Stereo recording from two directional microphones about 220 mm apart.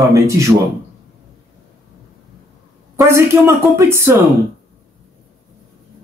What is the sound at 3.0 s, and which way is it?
Speech, 10° right (ahead or behind).